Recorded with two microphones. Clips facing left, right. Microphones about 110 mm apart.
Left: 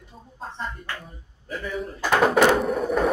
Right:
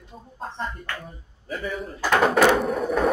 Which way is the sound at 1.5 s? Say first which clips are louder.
Even; centre (ahead or behind).